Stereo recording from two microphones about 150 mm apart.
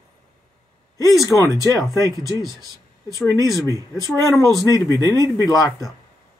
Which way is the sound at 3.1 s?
20° left (ahead or behind).